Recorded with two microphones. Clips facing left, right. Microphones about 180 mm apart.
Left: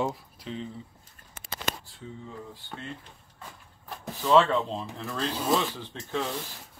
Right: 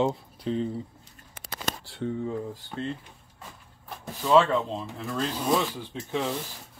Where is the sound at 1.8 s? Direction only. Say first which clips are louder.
Right 12 dB; 70° right (ahead or behind).